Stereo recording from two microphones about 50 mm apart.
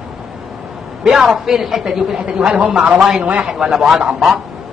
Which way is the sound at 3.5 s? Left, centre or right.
Centre.